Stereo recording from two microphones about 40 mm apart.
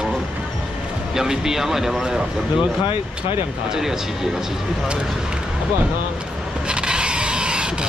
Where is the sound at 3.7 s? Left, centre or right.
Centre.